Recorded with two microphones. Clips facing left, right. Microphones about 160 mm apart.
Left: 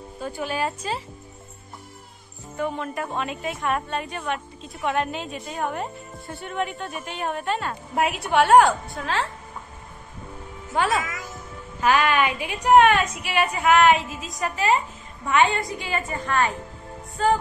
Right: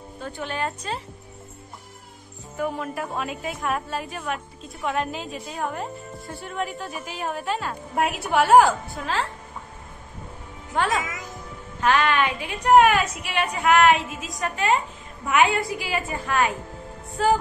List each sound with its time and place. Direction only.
0.2 s a woman's voice: 5° left (ahead or behind)
2.5 s a woman's voice: 5° right (ahead or behind)
10.7 s a woman's voice: centre (ahead or behind)
11.0 s a woman's voice: 20° right (ahead or behind)
11.8 s a woman's voice: 5° left (ahead or behind)
12.7 s a woman's voice: 5° right (ahead or behind)